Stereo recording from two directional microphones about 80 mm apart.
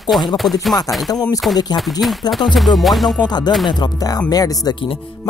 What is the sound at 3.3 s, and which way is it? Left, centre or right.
Speech, left.